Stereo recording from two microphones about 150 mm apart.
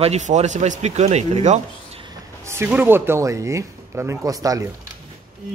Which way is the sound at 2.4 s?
15° right (ahead or behind).